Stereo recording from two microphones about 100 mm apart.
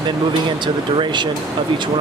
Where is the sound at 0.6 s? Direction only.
50° right (ahead or behind).